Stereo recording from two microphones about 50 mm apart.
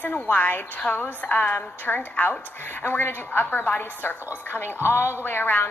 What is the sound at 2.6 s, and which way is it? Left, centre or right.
A woman's voice, left.